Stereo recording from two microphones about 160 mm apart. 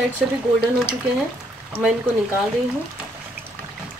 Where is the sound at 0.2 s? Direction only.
5° right (ahead or behind).